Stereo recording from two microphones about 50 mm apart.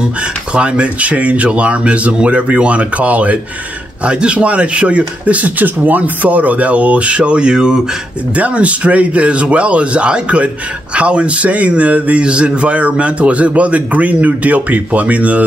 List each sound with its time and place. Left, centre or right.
0.6 s speech: right
8.4 s speech: right